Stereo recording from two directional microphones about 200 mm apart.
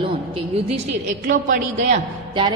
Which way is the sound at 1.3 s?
40° right (ahead or behind).